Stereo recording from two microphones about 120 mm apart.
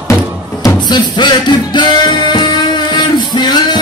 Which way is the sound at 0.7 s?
35° left (ahead or behind).